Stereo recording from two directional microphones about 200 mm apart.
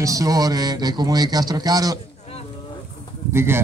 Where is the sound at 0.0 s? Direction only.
15° right (ahead or behind).